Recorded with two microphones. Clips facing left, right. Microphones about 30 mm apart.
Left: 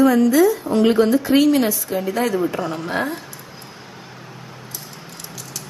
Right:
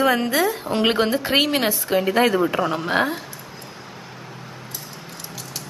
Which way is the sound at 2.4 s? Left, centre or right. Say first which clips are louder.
Right 2 dB; right.